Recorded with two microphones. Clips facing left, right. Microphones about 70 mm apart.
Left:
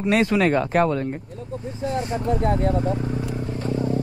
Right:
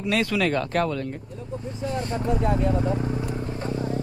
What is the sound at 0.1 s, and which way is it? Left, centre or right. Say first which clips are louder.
Speech: left 4 dB; left.